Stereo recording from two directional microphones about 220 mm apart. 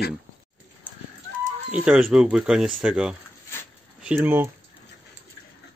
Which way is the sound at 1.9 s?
5° right (ahead or behind).